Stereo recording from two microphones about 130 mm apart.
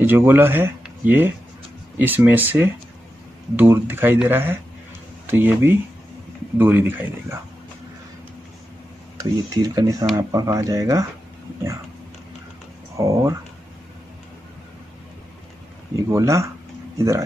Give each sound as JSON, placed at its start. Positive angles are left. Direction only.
{"t": 0.0, "sound": "speech", "side_deg": -15}
{"t": 9.2, "sound": "speech", "side_deg": -30}
{"t": 12.9, "sound": "speech", "side_deg": -25}
{"t": 16.0, "sound": "speech", "side_deg": -25}